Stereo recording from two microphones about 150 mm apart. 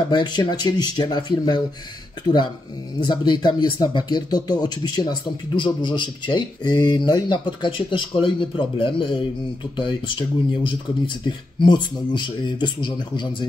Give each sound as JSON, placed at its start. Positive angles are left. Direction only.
{"t": 0.1, "sound": "speech", "side_deg": 30}
{"t": 3.0, "sound": "speech", "side_deg": 30}